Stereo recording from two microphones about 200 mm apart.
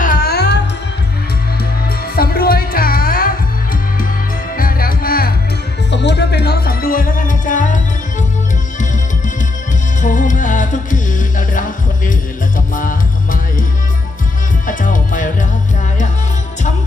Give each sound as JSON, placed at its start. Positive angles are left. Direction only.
{"t": 0.0, "sound": "music", "side_deg": 45}
{"t": 2.1, "sound": "music", "side_deg": 50}
{"t": 4.6, "sound": "music", "side_deg": 45}
{"t": 5.9, "sound": "music", "side_deg": 60}
{"t": 10.0, "sound": "music", "side_deg": 40}
{"t": 14.7, "sound": "music", "side_deg": 40}